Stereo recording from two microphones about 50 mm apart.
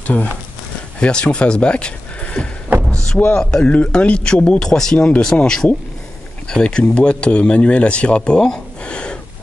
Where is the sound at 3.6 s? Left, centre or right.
Left.